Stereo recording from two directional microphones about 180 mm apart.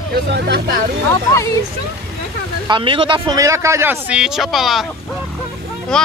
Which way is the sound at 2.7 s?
30° right (ahead or behind).